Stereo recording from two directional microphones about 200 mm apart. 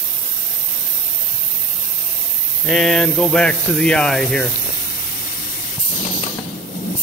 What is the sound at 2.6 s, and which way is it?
Speech, centre (ahead or behind).